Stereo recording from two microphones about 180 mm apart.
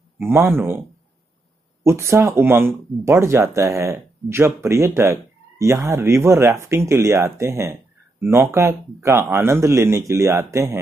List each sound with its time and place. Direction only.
0.2 s speech: 15° right (ahead or behind)